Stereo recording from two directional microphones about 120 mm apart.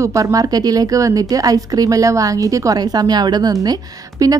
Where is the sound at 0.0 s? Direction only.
25° right (ahead or behind).